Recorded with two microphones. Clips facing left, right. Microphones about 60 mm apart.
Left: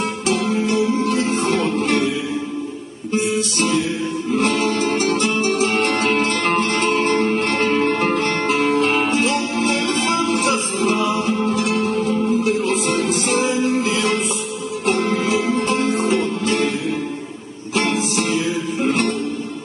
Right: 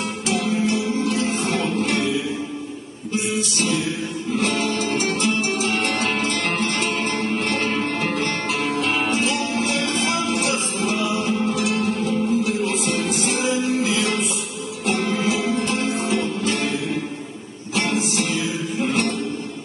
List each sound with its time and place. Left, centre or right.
0.3 s music: left
3.1 s music: left
17.7 s music: left